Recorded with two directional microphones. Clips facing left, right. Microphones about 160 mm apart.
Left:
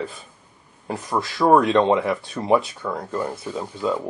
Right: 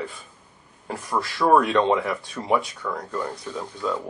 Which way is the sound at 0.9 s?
15° left (ahead or behind).